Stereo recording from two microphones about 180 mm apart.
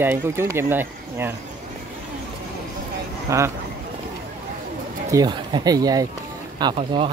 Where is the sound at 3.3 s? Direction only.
15° right (ahead or behind).